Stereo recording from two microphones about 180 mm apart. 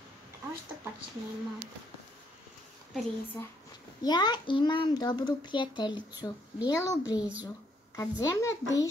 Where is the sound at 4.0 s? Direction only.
25° left (ahead or behind).